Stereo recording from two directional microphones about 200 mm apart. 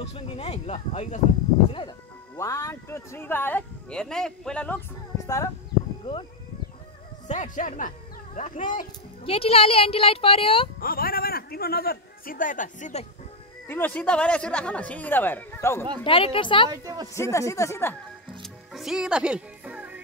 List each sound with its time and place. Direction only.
0.1 s speech: 30° left (ahead or behind); by 5.5 s 15° left (ahead or behind)
7.2 s speech: 40° left (ahead or behind)
9.2 s speech: 30° left (ahead or behind)
10.8 s a man's voice: 45° left (ahead or behind)
13.7 s speech: 10° left (ahead or behind)
16.0 s speech: 25° left (ahead or behind)
16.7 s a woman's voice: 20° right (ahead or behind)
17.1 s speech: 15° left (ahead or behind)
18.4 s music: centre (ahead or behind)